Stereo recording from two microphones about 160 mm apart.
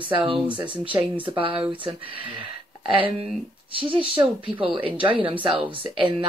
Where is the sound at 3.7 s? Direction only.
35° right (ahead or behind).